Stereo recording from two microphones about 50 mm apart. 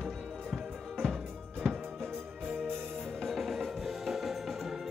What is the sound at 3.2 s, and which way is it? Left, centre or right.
Music, centre.